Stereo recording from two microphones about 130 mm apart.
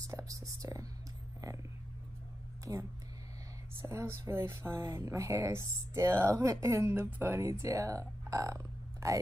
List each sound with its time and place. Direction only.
0.0 s speech: 25° right (ahead or behind)
2.6 s speech: 25° right (ahead or behind)